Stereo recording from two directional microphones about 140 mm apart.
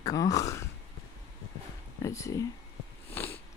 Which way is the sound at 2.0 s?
20° left (ahead or behind).